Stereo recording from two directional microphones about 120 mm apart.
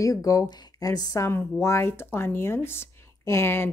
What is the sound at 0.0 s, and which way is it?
Speech, 30° left (ahead or behind).